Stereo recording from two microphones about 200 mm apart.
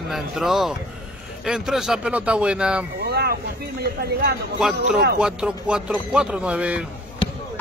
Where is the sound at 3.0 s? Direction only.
50° right (ahead or behind).